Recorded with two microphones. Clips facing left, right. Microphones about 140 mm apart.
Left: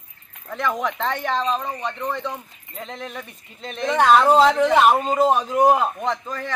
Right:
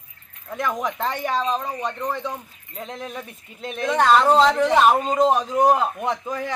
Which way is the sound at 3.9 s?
5° left (ahead or behind).